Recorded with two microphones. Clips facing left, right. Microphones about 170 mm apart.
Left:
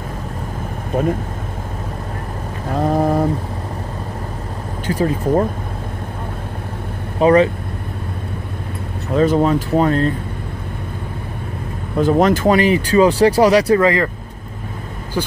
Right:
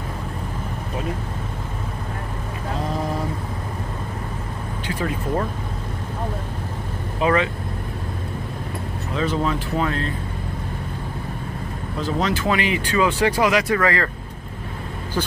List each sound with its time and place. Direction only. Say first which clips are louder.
0.9 s speech: left 11 dB; 50° left (ahead or behind)
2.8 s a sound: left 11 dB; 55° left (ahead or behind)
4.8 s speech: left 8 dB; 35° left (ahead or behind)
7.2 s speech: left 8 dB; 35° left (ahead or behind)
9.1 s speech: left 9 dB; 45° left (ahead or behind)
12.0 s speech: left 9 dB; 50° left (ahead or behind); by 13.7 s 35° left (ahead or behind)
13.7 s speech: left 6 dB; 20° left (ahead or behind)
15.2 s speech: left 3 dB; 10° left (ahead or behind)